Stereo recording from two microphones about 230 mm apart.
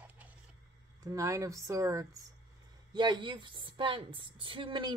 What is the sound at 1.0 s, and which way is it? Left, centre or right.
A woman's voice, centre.